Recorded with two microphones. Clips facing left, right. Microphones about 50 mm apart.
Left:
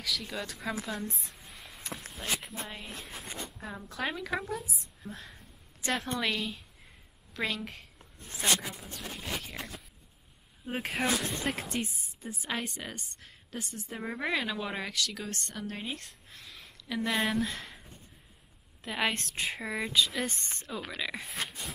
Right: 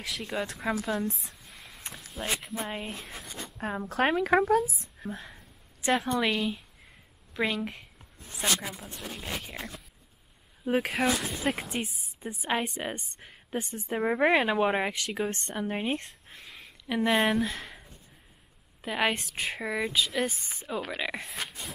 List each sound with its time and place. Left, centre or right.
0.2 s a woman's voice: right
1.1 s a sound: centre
2.1 s speech: centre
3.5 s speech: right
4.1 s speech: right
5.1 s a sound: centre
6.1 s speech: centre
8.0 s a sound: centre
9.2 s speech: centre
10.8 s a woman's voice: centre; by 17.1 s right
17.1 s speech: centre
18.8 s speech: centre
20.9 s a woman's voice: right
21.2 s speech: centre